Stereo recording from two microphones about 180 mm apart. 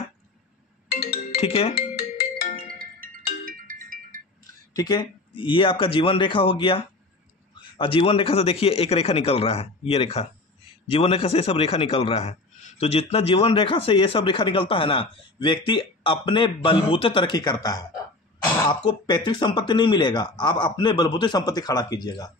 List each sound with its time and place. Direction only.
1.1 s music: 35° left (ahead or behind)
3.0 s music: 50° right (ahead or behind)
4.7 s a man's voice: 20° left (ahead or behind)